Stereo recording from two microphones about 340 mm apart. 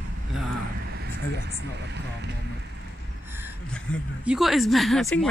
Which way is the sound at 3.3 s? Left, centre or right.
Centre.